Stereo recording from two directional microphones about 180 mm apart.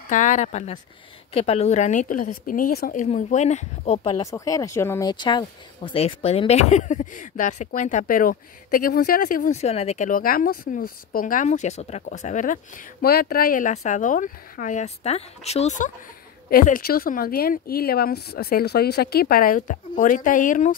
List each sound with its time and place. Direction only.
0.1 s a woman's voice: 45° left (ahead or behind)
4.2 s speech: 20° left (ahead or behind); by 15.9 s 40° left (ahead or behind)
16.4 s speech: 50° left (ahead or behind)